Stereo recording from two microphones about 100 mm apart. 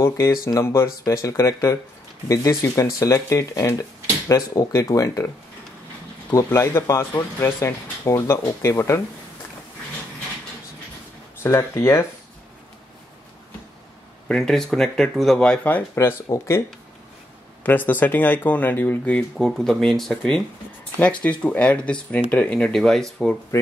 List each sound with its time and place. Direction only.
0.0 s speech: 30° left (ahead or behind)
6.3 s speech: 30° left (ahead or behind)
11.4 s speech: 25° left (ahead or behind)
14.2 s speech: 5° left (ahead or behind); by 16.6 s 30° left (ahead or behind)
17.6 s speech: 15° left (ahead or behind)
19.3 s speech: 5° left (ahead or behind)